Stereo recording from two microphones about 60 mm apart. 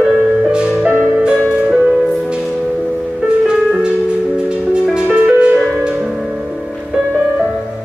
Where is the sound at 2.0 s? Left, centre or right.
Centre.